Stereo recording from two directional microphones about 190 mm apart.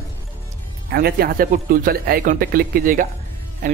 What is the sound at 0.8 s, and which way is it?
Speech, 55° right (ahead or behind).